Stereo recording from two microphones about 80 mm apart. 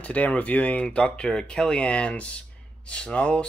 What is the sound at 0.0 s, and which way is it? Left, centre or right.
Speech, centre.